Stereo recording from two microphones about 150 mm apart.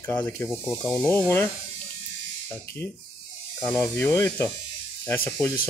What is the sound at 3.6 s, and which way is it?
Speech, 15° left (ahead or behind).